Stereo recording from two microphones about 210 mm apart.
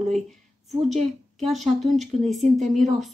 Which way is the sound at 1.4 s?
Centre (ahead or behind).